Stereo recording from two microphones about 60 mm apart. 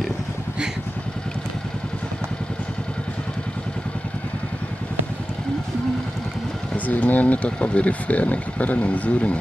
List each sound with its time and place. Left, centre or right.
6.9 s speech: left